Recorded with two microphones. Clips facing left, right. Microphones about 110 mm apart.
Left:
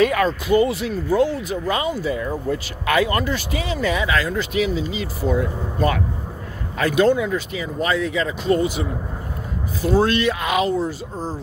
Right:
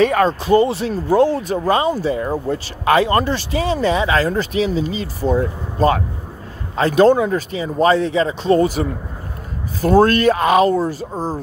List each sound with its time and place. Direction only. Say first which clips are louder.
0.0 s speech: right 3 dB; 35° right (ahead or behind)